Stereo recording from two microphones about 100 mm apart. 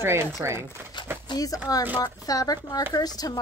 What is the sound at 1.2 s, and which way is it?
A woman's voice, 40° left (ahead or behind).